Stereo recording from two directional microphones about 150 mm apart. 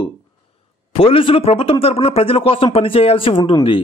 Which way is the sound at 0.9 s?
40° left (ahead or behind).